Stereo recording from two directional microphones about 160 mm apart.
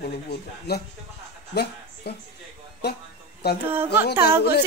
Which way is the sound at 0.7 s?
90° left.